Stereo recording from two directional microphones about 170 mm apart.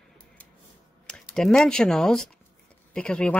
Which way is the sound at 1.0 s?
5° left (ahead or behind).